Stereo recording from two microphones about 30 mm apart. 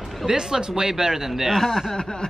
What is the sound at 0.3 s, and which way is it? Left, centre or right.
Speech, right.